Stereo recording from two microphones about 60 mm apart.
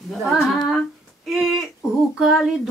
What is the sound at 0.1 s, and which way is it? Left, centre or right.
Speech, centre.